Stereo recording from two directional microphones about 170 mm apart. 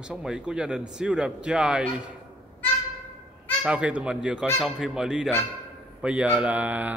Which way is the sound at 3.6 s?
5° right (ahead or behind).